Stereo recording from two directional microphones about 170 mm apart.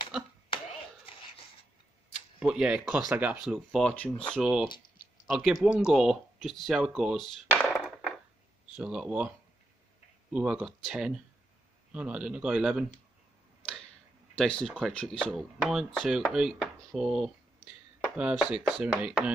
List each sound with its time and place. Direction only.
0.1 s a sound: 5° right (ahead or behind)
1.0 s a sound: 35° left (ahead or behind)
2.4 s speech: 5° right (ahead or behind)
4.4 s speech: 5° right (ahead or behind)
4.6 s speech: 25° left (ahead or behind)
5.2 s speech: 5° right (ahead or behind)
7.7 s a sound: 5° right (ahead or behind)
8.7 s speech: 5° right (ahead or behind)
10.3 s speech: 5° right (ahead or behind)
14.3 s speech: 5° left (ahead or behind)
18.8 s speech: 10° right (ahead or behind)